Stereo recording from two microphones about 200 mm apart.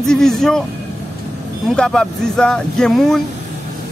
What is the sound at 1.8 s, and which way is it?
Speech, 5° left (ahead or behind).